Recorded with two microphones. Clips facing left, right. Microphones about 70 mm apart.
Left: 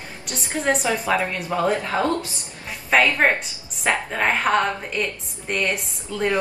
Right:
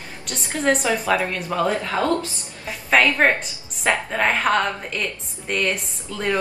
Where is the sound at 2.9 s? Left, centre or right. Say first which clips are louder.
Right 1 dB; centre.